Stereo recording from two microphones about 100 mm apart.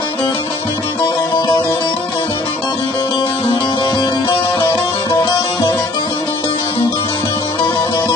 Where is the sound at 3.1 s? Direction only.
65° left (ahead or behind).